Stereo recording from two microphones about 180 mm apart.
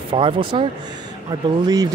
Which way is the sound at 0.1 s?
30° right (ahead or behind).